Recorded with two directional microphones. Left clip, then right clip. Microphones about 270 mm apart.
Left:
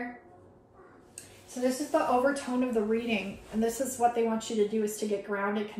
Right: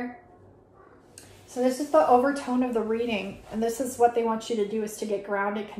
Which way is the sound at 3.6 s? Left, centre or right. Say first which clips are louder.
Right 4 dB; right.